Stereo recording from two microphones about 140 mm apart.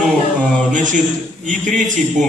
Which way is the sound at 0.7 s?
65° right (ahead or behind).